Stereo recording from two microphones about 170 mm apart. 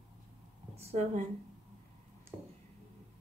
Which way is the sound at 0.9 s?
40° right (ahead or behind).